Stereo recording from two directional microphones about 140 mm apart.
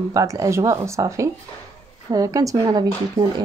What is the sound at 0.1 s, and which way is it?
Speech, 25° right (ahead or behind).